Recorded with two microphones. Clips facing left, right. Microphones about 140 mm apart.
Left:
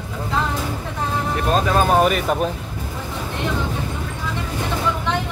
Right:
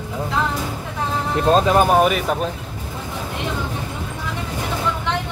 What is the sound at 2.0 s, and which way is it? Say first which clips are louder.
Speech: even; centre (ahead or behind).